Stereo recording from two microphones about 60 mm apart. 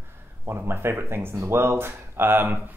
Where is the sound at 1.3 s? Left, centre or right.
Right.